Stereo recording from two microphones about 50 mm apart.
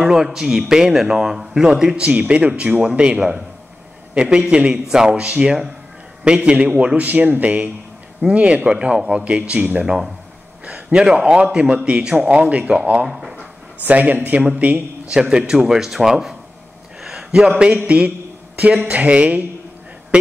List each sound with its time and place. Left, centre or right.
0.0 s a man's voice: centre
2.0 s a man's voice: right
9.2 s a man's voice: right
9.8 s a man's voice: centre; by 13.0 s right
13.0 s speech: centre
13.7 s a man's voice: right
15.1 s a man's voice: centre
17.0 s a sound: centre
17.7 s a man's voice: right